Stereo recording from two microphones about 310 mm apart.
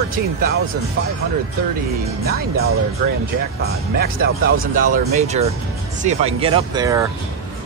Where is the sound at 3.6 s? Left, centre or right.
Right; by 7.0 s centre.